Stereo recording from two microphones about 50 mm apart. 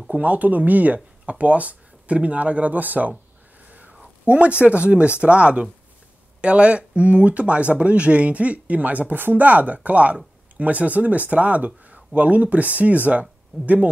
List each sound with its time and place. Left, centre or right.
0.1 s speech: right
4.3 s speech: right